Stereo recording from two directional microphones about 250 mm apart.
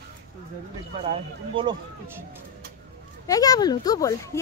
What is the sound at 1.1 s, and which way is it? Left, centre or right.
Speech, centre.